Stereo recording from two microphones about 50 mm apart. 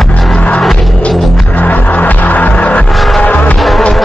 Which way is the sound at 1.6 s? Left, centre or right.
Left.